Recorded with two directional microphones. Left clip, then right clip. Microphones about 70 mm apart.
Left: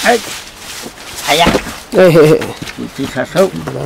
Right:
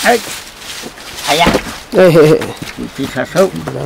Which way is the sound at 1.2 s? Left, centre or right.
Centre.